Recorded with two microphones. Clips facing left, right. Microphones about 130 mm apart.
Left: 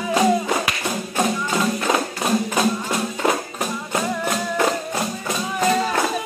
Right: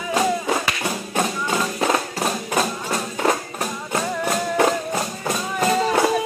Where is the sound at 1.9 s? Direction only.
Centre (ahead or behind).